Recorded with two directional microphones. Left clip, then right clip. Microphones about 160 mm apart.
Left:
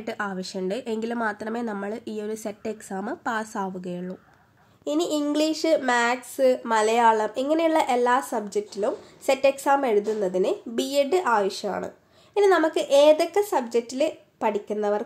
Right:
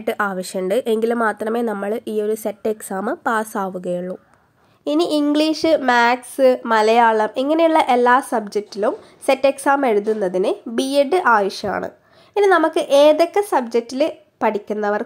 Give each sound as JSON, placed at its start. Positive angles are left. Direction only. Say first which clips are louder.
{"t": 0.0, "sound": "speech", "louder": "right 9 dB", "side_deg": -25}